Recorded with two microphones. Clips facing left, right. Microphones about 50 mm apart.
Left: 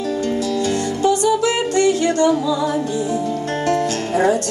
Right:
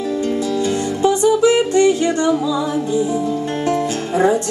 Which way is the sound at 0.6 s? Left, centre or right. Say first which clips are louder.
Right 1 dB; centre.